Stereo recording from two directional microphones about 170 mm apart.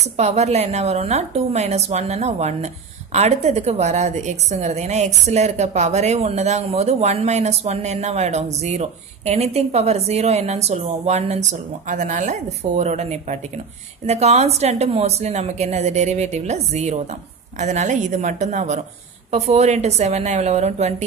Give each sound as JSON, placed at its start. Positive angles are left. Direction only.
{"t": 0.2, "sound": "a woman's voice", "side_deg": -40}